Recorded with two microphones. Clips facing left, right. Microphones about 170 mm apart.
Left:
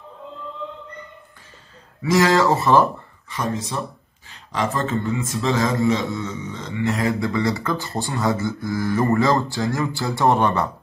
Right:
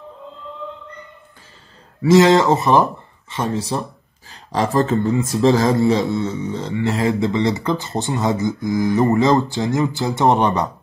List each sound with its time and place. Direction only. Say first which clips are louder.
2.0 s a man's voice: right 5 dB; 25° right (ahead or behind)
7.1 s speech: right 3 dB; 20° right (ahead or behind)